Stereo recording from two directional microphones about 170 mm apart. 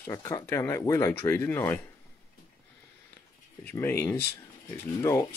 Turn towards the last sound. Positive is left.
turn(degrees=15)  # may be behind; listen again after turning